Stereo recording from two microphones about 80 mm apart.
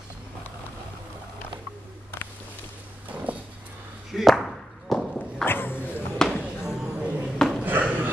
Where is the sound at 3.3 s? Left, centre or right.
Centre.